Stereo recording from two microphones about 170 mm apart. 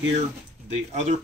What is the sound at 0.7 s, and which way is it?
Speech, 40° right (ahead or behind).